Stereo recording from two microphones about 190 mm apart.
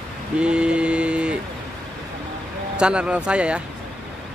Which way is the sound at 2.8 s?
5° right (ahead or behind).